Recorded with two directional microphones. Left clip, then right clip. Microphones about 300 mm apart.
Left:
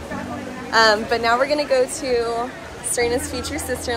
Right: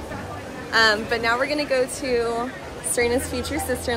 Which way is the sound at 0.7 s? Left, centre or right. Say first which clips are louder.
Left 3 dB; centre.